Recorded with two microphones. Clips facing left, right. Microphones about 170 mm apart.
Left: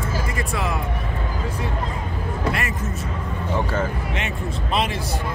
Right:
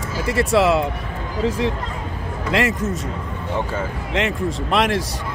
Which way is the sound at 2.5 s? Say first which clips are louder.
Right 8 dB; 90° right.